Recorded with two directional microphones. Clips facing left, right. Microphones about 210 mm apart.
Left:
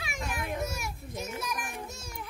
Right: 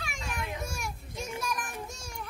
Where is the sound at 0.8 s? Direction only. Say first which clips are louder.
Left 1 dB; 5° left (ahead or behind).